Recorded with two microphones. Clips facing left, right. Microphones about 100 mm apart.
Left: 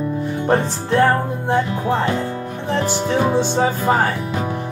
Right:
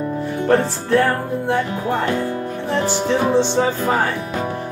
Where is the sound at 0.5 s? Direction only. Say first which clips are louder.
Right 2 dB; 20° left (ahead or behind).